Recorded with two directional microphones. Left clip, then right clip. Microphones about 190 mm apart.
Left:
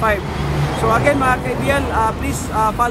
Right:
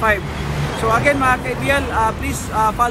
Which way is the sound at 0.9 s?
20° left (ahead or behind).